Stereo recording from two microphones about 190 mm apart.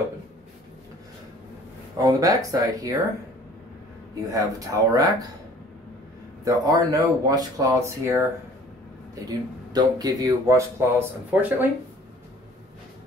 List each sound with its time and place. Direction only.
2.0 s speech: 20° right (ahead or behind)
4.3 s speech: 20° right (ahead or behind)
6.4 s speech: 20° right (ahead or behind)
9.7 s speech: 20° right (ahead or behind)